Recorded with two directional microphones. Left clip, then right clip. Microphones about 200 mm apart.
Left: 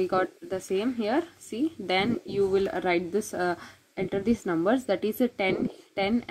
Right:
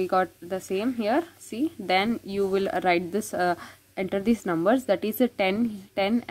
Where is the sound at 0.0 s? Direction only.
10° right (ahead or behind).